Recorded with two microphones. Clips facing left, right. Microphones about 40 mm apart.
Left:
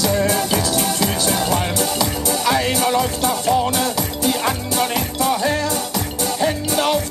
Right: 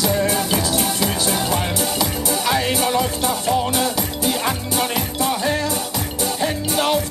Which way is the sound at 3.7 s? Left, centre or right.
Centre.